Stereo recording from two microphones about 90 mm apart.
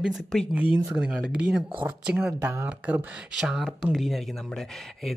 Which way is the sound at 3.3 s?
5° right (ahead or behind).